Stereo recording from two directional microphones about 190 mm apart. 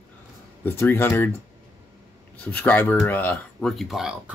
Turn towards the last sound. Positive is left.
turn(degrees=-5)  # may be behind; listen again after turning